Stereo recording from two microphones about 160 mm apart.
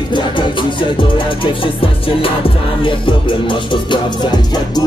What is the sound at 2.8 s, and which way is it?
Music, 30° left (ahead or behind).